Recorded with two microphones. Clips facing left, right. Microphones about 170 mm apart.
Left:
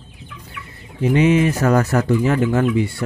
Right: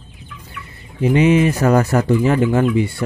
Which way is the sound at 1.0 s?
15° right (ahead or behind).